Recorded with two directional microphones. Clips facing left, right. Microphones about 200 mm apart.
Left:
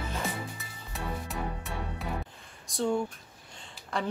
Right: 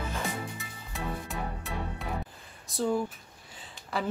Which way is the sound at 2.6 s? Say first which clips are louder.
Even; 5° right (ahead or behind).